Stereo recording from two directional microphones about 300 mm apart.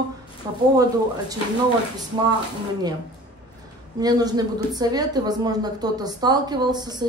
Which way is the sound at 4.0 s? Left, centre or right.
Centre.